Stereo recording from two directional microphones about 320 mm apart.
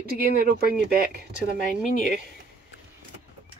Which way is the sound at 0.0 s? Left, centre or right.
Right.